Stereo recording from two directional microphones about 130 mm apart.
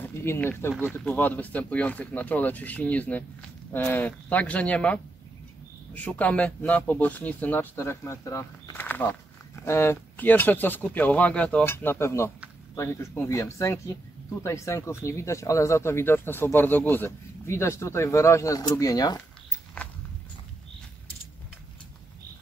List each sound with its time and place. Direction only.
0.1 s speech: 20° left (ahead or behind)